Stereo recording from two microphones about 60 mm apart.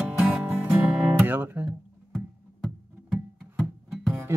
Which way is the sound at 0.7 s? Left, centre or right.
Right.